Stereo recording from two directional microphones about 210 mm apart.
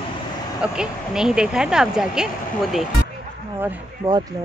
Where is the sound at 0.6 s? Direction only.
5° right (ahead or behind).